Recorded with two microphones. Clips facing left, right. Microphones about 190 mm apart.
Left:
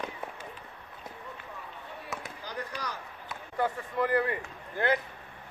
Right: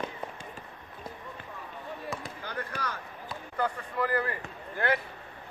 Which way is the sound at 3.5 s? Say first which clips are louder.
Left 1 dB; 25° left (ahead or behind).